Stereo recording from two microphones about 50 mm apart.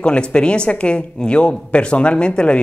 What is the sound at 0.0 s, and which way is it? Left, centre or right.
A woman's voice, left.